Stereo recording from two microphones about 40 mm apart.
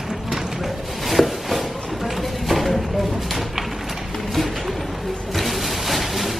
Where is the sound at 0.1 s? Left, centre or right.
Centre.